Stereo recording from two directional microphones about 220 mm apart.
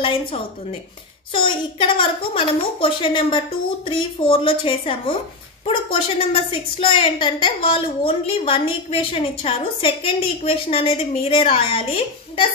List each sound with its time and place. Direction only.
0.0 s a woman's voice: 25° left (ahead or behind)